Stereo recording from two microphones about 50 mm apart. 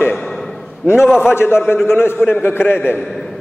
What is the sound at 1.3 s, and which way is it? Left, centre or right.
A man's voice, left.